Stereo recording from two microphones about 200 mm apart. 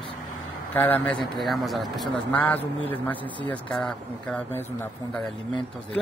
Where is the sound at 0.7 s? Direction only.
10° left (ahead or behind).